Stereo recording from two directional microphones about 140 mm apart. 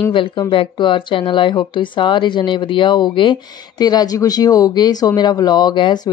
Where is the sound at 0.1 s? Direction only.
35° left (ahead or behind).